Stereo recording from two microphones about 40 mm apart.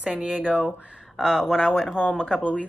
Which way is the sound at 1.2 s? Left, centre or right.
Centre.